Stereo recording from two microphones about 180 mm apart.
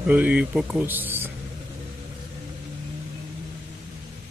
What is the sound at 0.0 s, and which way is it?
Speech, 10° right (ahead or behind).